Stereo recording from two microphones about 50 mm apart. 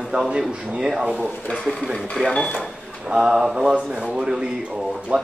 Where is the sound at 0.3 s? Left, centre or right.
Centre.